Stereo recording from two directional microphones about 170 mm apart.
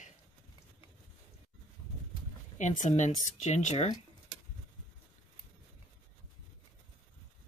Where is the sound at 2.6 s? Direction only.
45° left (ahead or behind).